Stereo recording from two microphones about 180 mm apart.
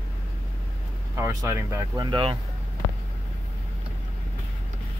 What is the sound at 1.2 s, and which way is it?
Speech, 15° right (ahead or behind).